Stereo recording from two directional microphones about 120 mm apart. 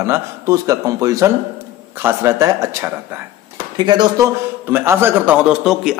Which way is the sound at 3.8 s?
40° right (ahead or behind).